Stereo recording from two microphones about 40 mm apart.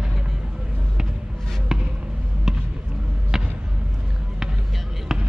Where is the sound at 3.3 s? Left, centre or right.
Centre.